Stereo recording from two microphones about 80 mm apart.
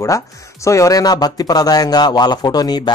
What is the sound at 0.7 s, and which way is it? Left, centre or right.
Speech, left.